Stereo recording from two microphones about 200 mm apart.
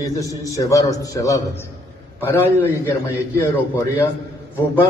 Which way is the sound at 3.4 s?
10° left (ahead or behind).